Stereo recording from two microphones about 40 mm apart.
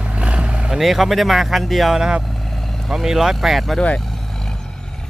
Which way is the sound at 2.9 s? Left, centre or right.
Centre.